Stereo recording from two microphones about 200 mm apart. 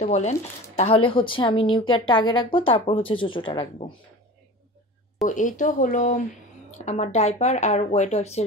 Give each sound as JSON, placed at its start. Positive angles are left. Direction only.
{"t": 0.0, "sound": "speech", "side_deg": 35}
{"t": 5.2, "sound": "speech", "side_deg": 40}